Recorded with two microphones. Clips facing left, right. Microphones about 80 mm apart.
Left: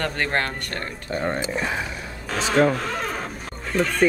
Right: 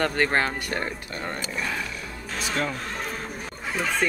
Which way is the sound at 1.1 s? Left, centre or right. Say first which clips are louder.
Left 7 dB; left.